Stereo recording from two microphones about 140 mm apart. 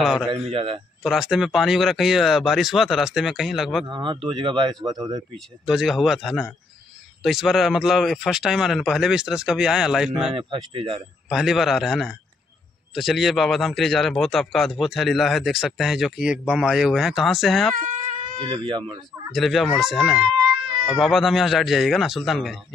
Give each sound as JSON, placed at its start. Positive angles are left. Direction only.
{"t": 0.0, "sound": "a man's voice", "side_deg": 0}
{"t": 0.3, "sound": "speech", "side_deg": -40}
{"t": 1.0, "sound": "a man's voice", "side_deg": 0}
{"t": 3.8, "sound": "speech", "side_deg": -35}
{"t": 5.7, "sound": "a man's voice", "side_deg": 0}
{"t": 10.3, "sound": "speech", "side_deg": -40}
{"t": 11.2, "sound": "a man's voice", "side_deg": 0}
{"t": 18.0, "sound": "a sound", "side_deg": -65}
{"t": 18.4, "sound": "speech", "side_deg": -35}
{"t": 19.3, "sound": "a man's voice", "side_deg": 0}